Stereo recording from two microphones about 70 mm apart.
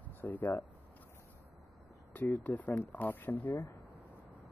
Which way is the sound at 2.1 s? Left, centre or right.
Left.